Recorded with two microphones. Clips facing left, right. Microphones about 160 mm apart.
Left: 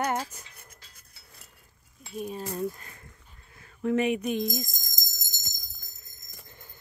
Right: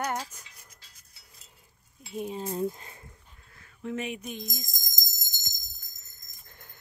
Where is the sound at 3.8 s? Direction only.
65° left (ahead or behind).